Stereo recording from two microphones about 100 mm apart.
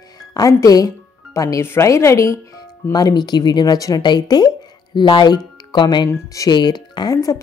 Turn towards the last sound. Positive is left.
turn(degrees=35)  # may be behind; listen again after turning